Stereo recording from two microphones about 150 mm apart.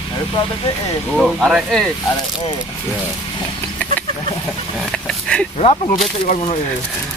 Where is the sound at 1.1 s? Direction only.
Centre (ahead or behind).